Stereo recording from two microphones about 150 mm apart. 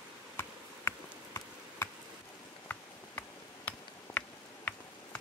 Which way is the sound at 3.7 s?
10° left (ahead or behind).